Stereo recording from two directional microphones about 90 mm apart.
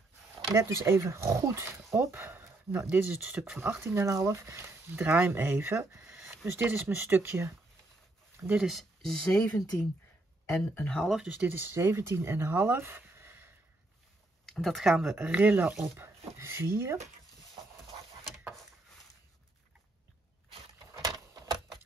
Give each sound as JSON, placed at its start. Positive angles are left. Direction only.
{"t": 0.6, "sound": "speech", "side_deg": -30}
{"t": 3.1, "sound": "speech", "side_deg": -10}
{"t": 3.5, "sound": "speech", "side_deg": -25}
{"t": 8.5, "sound": "speech", "side_deg": 0}
{"t": 10.5, "sound": "speech", "side_deg": 25}
{"t": 10.9, "sound": "speech", "side_deg": 5}
{"t": 11.3, "sound": "speech", "side_deg": -20}
{"t": 14.4, "sound": "speech", "side_deg": 0}
{"t": 21.1, "sound": "typewriter", "side_deg": -50}